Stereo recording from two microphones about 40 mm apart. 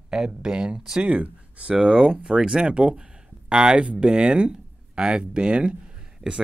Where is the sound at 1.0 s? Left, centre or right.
Right.